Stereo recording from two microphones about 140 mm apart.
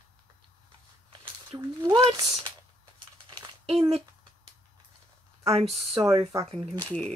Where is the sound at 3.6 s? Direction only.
50° right (ahead or behind).